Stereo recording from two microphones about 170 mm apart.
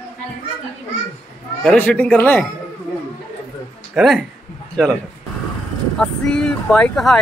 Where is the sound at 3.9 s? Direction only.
Centre (ahead or behind).